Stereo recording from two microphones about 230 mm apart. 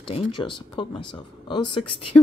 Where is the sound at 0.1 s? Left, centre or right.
Left.